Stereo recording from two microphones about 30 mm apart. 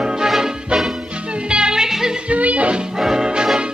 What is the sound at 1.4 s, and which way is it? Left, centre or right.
Music, right.